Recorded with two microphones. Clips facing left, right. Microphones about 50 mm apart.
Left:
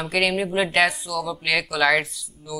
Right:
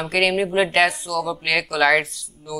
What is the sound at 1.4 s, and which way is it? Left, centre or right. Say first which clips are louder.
Speech: right 1 dB; right.